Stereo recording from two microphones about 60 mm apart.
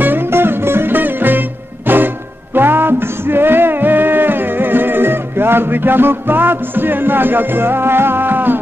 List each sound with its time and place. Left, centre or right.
0.0 s music: right